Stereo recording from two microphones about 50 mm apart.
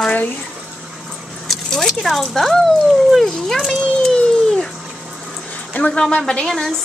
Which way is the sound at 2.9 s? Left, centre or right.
Centre.